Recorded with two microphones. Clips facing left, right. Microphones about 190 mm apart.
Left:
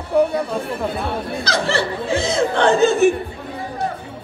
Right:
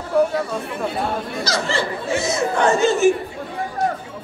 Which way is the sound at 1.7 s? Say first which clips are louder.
Left 2 dB; 65° left (ahead or behind).